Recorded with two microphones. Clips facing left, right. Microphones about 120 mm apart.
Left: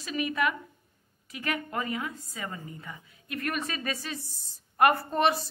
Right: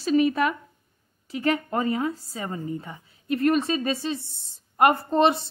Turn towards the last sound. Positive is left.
turn(degrees=-25)  # may be behind; listen again after turning